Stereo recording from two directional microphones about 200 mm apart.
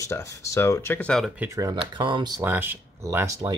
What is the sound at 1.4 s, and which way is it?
Speech, 15° right (ahead or behind).